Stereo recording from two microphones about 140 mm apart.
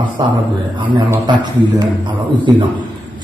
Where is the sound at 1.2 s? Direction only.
30° right (ahead or behind).